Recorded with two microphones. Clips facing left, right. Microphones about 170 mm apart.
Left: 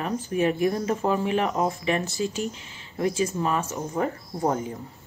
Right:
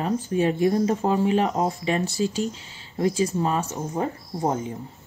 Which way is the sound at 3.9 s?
20° right (ahead or behind).